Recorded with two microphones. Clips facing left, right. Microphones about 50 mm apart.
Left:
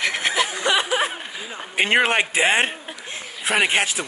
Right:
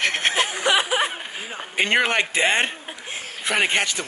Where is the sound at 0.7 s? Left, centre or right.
Centre.